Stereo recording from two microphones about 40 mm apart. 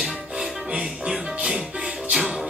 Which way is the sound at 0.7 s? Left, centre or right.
Centre.